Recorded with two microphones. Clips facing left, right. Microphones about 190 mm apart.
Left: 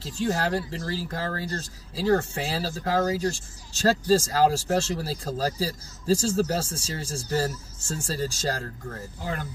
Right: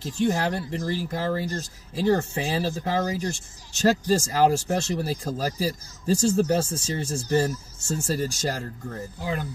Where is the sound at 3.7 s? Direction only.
15° right (ahead or behind).